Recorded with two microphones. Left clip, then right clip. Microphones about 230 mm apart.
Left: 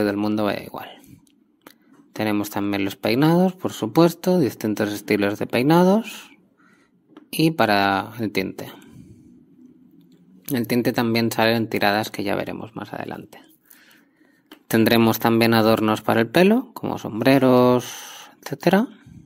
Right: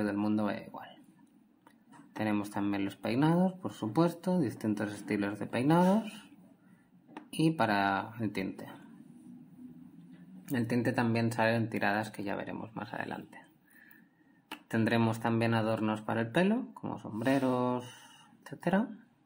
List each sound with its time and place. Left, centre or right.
0.0 s speech: left
2.1 s speech: left
7.3 s speech: left
10.4 s speech: left
14.7 s speech: left